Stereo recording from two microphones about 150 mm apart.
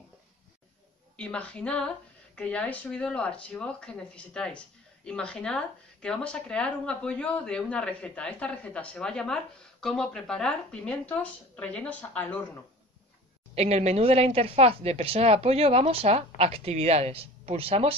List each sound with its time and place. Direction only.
1.1 s speech: 5° left (ahead or behind)
13.6 s speech: 45° right (ahead or behind)